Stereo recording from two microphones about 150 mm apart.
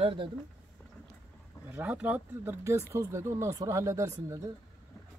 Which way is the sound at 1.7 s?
10° right (ahead or behind).